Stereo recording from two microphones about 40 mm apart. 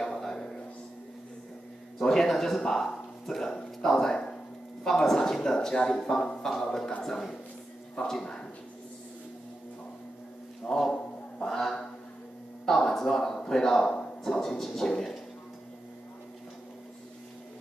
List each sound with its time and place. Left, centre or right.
0.2 s music: centre
2.0 s a man's voice: centre
10.9 s a sound: centre
12.6 s speech: centre
13.3 s a sound: left
13.6 s speech: centre